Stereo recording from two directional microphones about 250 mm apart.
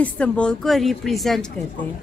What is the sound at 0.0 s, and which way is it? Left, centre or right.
A woman's voice, centre.